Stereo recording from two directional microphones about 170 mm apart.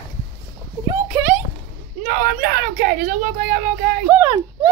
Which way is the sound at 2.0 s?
55° right (ahead or behind).